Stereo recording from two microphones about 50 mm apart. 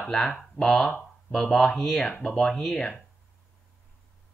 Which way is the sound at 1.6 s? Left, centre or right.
Left.